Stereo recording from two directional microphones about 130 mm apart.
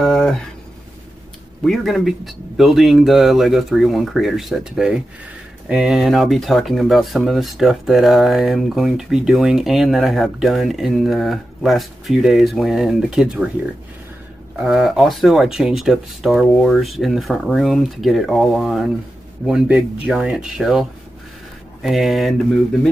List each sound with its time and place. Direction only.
0.0 s a sound: 5° left (ahead or behind)
1.6 s speech: centre (ahead or behind)
14.6 s speech: 5° right (ahead or behind)
21.8 s speech: centre (ahead or behind)